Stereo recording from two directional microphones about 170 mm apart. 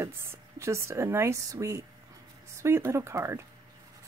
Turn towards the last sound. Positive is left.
turn(degrees=-15)  # may be behind; listen again after turning